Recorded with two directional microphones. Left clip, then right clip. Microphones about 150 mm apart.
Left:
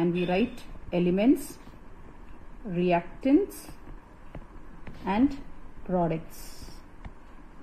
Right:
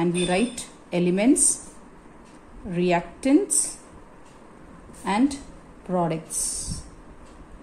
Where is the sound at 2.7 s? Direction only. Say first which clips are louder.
Right 3 dB; 30° left (ahead or behind).